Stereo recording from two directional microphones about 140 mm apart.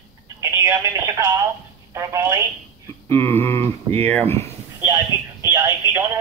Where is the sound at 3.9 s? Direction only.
15° left (ahead or behind).